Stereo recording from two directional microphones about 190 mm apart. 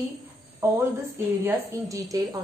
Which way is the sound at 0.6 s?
15° right (ahead or behind).